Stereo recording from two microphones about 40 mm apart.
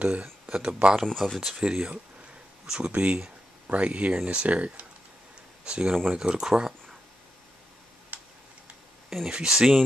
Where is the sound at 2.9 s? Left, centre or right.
Right.